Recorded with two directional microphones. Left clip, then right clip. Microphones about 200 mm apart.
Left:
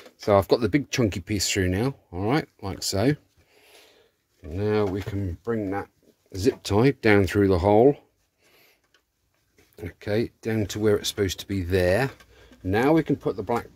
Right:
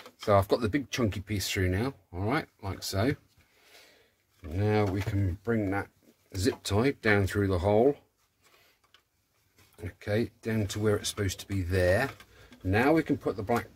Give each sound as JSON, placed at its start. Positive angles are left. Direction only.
{"t": 0.2, "sound": "speech", "side_deg": 35}
{"t": 4.6, "sound": "speech", "side_deg": 25}
{"t": 6.3, "sound": "speech", "side_deg": 30}
{"t": 9.8, "sound": "speech", "side_deg": 40}